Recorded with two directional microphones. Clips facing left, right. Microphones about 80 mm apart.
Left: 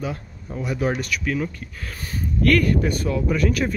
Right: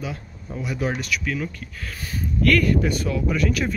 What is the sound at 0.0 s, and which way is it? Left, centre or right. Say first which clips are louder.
Speech: left 3 dB; left.